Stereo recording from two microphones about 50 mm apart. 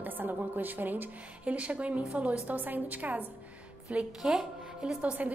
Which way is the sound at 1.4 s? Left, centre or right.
Right.